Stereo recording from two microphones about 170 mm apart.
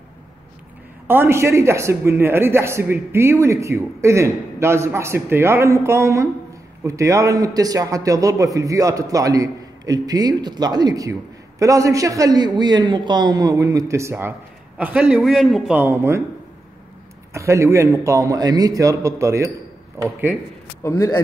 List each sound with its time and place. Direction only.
1.0 s a man's voice: 15° right (ahead or behind)
17.3 s a man's voice: 15° right (ahead or behind)
20.8 s a man's voice: 15° left (ahead or behind)